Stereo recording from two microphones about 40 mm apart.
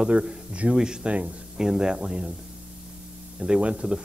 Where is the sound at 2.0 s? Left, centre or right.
Right.